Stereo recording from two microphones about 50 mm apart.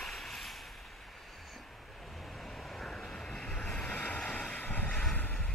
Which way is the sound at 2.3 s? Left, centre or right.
Centre.